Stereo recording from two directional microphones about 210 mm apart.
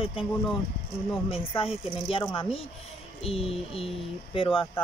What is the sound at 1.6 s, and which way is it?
Speech, 25° left (ahead or behind).